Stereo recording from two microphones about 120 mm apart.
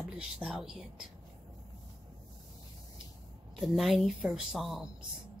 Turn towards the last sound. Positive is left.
turn(degrees=0)  # may be behind; listen again after turning